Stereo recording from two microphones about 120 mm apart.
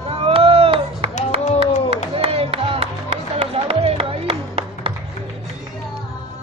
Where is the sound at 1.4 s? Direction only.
70° left (ahead or behind).